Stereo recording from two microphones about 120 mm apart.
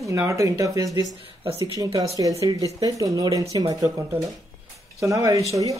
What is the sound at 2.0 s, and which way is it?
Speech, 30° right (ahead or behind).